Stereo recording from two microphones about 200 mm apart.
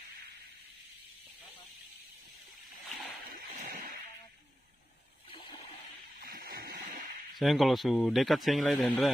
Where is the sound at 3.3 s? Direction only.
40° right (ahead or behind).